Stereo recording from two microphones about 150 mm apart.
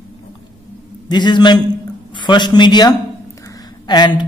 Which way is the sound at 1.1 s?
30° left (ahead or behind).